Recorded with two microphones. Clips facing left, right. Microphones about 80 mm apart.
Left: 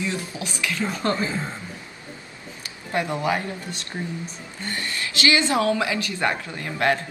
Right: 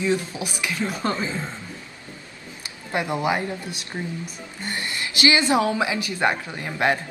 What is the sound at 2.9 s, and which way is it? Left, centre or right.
A woman's voice, centre.